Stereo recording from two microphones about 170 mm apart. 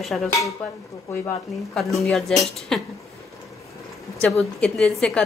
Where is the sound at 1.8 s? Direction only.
Centre (ahead or behind).